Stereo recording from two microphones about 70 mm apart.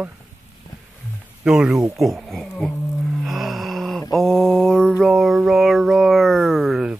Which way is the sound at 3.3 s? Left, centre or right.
Centre.